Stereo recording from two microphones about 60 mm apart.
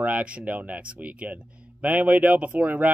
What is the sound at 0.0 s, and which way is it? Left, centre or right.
Speech, right.